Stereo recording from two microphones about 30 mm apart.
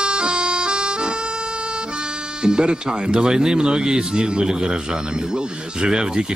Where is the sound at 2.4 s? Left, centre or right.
Right.